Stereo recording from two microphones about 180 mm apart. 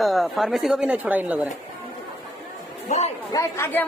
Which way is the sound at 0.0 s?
Centre (ahead or behind).